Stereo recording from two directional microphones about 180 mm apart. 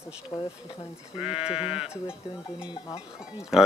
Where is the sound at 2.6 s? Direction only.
30° left (ahead or behind).